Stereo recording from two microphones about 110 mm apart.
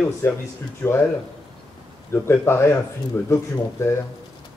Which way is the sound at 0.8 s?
10° left (ahead or behind).